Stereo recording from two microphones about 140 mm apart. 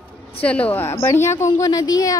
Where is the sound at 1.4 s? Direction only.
25° left (ahead or behind).